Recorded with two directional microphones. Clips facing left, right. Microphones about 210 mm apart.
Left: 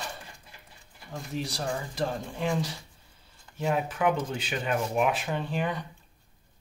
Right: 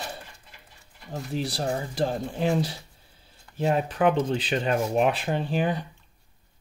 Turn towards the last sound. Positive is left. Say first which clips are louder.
# right 4 dB
turn(degrees=-35)  # may be behind; listen again after turning